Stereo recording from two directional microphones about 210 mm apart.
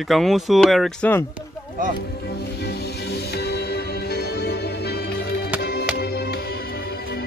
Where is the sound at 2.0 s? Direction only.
50° left (ahead or behind).